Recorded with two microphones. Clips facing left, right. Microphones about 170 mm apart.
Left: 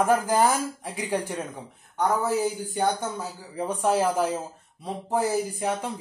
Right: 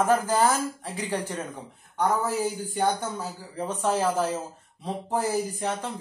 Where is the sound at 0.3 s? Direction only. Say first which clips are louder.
Left 1 dB; 10° left (ahead or behind).